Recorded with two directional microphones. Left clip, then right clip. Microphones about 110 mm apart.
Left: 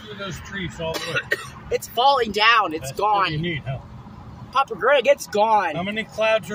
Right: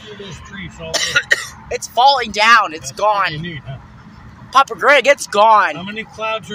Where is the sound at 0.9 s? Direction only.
20° right (ahead or behind).